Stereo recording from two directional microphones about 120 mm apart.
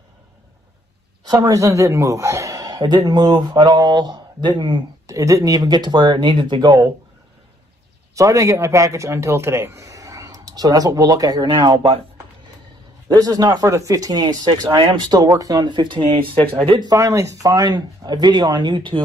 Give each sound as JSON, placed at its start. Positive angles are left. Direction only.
{"t": 1.2, "sound": "a man's voice", "side_deg": -35}
{"t": 8.1, "sound": "a man's voice", "side_deg": -25}
{"t": 13.1, "sound": "a man's voice", "side_deg": -30}
{"t": 16.9, "sound": "a man's voice", "side_deg": -25}